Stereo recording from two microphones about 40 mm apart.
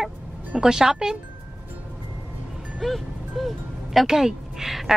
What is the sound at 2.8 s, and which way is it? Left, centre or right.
Music, centre.